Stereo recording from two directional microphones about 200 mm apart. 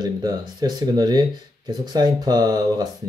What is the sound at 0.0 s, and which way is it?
Speech, 20° right (ahead or behind).